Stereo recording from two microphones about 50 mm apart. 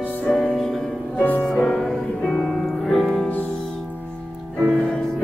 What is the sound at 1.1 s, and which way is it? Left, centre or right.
Music, left.